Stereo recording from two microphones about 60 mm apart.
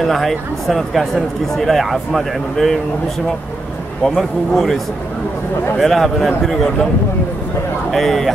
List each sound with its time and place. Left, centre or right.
0.0 s speech: centre
4.0 s speech: centre
5.8 s speech: centre
7.9 s speech: centre